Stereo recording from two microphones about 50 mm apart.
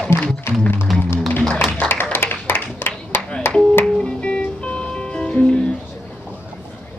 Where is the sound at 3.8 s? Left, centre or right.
Centre.